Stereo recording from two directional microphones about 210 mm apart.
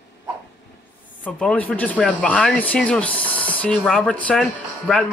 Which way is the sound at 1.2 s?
5° left (ahead or behind).